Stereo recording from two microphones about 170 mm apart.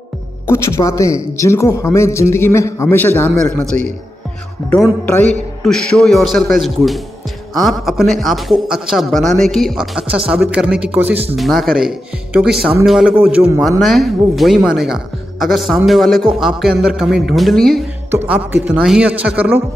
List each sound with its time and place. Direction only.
0.5 s a man's voice: 15° left (ahead or behind)
5.0 s a man's voice: 10° left (ahead or behind)
18.1 s a man's voice: 10° right (ahead or behind)